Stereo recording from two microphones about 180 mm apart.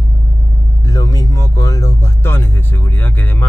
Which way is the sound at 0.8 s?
20° left (ahead or behind).